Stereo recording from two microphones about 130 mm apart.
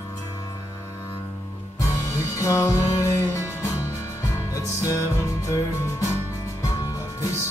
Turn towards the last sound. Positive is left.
turn(degrees=25)  # may be behind; listen again after turning